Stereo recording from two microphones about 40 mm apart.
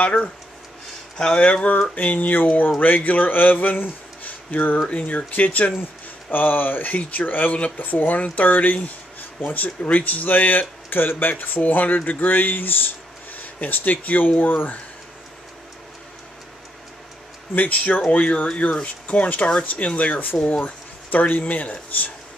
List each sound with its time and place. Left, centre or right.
0.0 s speech: left
1.1 s speech: left
4.5 s speech: left
5.0 s speech: left
9.8 s speech: left
17.6 s speech: left